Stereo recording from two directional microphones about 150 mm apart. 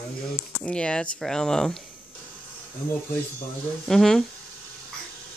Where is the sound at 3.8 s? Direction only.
5° left (ahead or behind).